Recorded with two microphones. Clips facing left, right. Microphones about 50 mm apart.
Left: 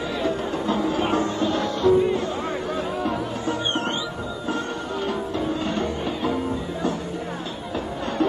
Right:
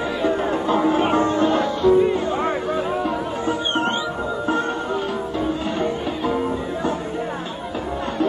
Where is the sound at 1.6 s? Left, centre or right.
Centre.